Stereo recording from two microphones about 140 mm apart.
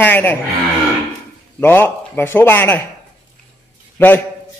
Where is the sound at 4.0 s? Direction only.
15° left (ahead or behind).